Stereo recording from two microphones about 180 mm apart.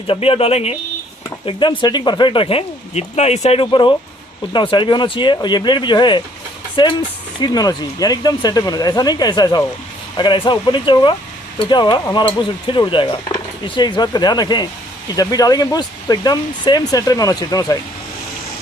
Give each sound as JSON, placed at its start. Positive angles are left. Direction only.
{"t": 0.0, "sound": "speech", "side_deg": 30}